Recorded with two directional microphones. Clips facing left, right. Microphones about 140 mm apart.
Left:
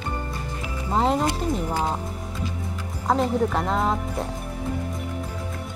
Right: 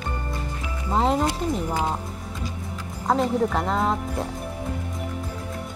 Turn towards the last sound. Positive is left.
turn(degrees=0)  # may be behind; listen again after turning